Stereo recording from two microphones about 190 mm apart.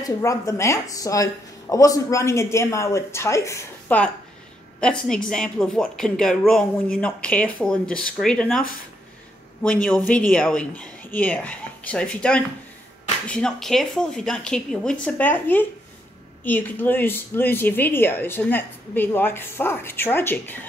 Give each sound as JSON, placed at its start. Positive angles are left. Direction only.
{"t": 0.0, "sound": "a woman's voice", "side_deg": 15}